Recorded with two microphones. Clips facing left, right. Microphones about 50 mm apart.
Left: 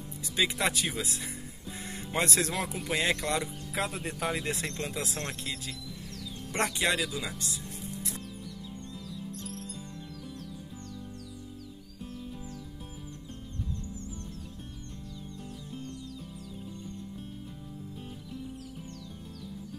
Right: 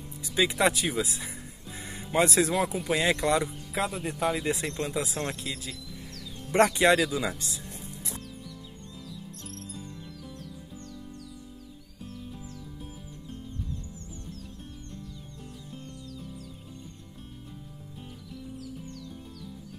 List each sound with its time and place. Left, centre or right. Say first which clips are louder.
0.4 s speech: right 4 dB; centre
6.7 s speech: right 7 dB; centre
7.1 s speech: right 6 dB; right